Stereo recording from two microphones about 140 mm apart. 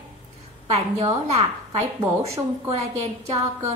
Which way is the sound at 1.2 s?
50° right (ahead or behind).